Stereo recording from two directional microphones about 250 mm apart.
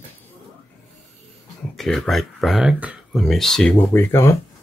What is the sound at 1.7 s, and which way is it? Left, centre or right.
Speech, centre.